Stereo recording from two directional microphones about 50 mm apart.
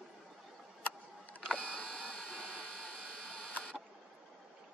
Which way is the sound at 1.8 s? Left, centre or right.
Centre.